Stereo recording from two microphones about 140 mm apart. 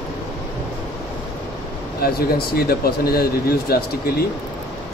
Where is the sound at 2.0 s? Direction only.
90° left.